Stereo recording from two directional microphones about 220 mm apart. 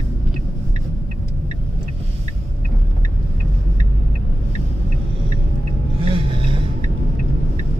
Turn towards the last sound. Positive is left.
turn(degrees=-25)  # may be behind; listen again after turning